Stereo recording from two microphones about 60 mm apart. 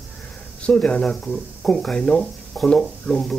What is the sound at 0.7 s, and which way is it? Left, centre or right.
Speech, centre.